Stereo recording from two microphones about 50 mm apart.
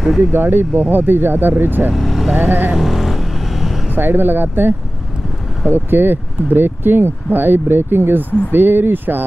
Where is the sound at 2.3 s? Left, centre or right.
Right.